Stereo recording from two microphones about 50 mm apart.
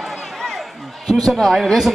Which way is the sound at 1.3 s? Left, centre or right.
Centre.